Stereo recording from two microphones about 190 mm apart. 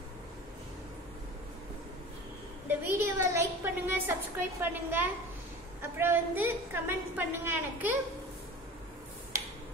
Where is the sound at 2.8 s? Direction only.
10° right (ahead or behind).